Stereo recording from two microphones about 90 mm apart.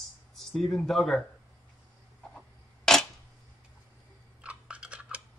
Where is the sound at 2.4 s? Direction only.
5° left (ahead or behind).